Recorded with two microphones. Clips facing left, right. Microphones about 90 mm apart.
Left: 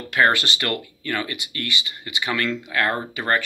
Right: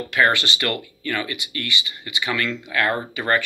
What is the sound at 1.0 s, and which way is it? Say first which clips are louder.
Speech: right 2 dB; 30° left (ahead or behind).